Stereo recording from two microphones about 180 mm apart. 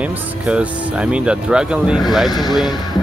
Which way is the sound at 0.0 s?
5° right (ahead or behind).